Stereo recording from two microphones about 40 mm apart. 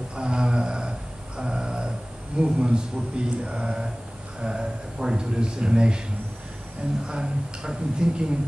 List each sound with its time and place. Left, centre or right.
0.1 s a sound: right
4.4 s speech: right
7.1 s speech: centre